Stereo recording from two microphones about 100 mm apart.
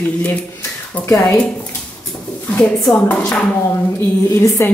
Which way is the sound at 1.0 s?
35° left (ahead or behind).